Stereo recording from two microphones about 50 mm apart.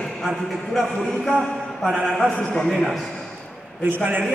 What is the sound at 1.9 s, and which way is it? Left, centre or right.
A man's voice, centre.